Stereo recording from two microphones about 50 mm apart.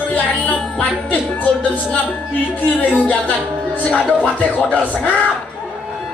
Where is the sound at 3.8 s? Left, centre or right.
Left.